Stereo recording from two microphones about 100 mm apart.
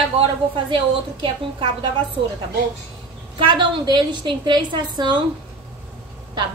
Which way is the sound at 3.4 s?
55° right (ahead or behind).